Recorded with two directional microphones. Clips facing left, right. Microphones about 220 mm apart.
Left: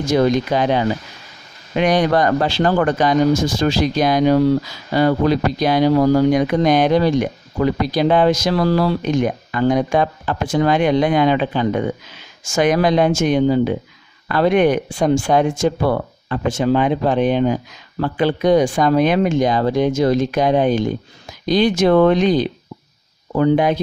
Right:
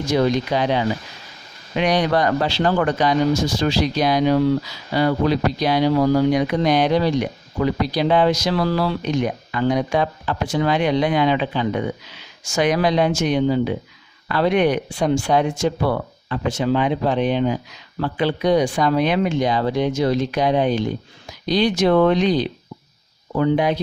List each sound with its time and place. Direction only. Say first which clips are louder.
0.1 s speech: left 3 dB; 45° left (ahead or behind)